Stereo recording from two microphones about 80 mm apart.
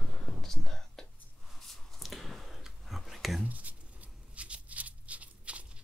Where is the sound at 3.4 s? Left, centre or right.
Centre.